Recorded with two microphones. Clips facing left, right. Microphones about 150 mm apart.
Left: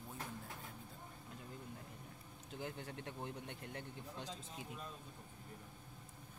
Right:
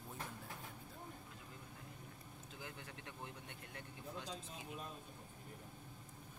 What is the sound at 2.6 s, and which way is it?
Speech, 30° left (ahead or behind).